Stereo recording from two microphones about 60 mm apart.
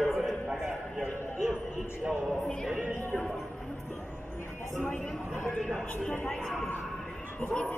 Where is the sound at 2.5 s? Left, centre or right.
Centre.